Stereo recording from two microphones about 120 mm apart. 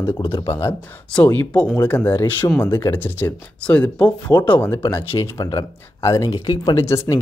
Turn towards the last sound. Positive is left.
turn(degrees=25)  # may be behind; listen again after turning